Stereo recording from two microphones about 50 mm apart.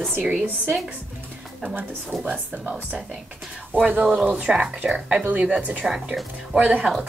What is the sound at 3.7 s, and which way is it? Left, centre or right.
Speech, right.